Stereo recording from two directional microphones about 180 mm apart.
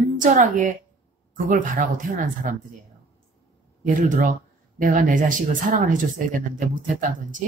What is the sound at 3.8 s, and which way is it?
A woman's voice, 45° right (ahead or behind).